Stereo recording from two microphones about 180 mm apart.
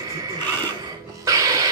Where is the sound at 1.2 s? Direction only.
20° right (ahead or behind).